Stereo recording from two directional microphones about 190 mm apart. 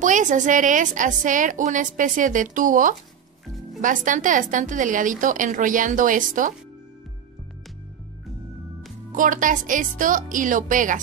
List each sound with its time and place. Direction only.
0.0 s a woman's voice: 40° right (ahead or behind)
9.1 s a woman's voice: 45° right (ahead or behind)